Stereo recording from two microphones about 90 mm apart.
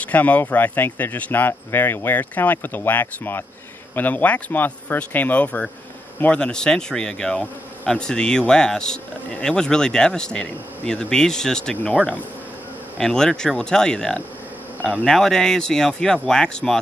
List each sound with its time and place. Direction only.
0.0 s speech: 20° left (ahead or behind)